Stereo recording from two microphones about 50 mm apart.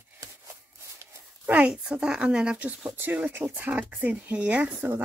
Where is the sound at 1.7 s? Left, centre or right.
Centre.